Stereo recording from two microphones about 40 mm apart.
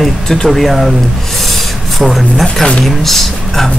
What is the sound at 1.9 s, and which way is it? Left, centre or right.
Speech, centre.